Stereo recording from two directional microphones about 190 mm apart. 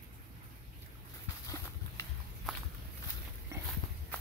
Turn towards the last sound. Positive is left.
turn(degrees=-15)  # may be behind; listen again after turning